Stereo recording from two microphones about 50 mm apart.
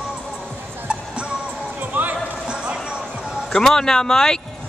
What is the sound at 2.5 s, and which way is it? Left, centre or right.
Music, centre.